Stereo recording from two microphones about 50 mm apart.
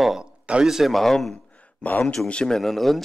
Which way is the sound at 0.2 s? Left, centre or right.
Centre.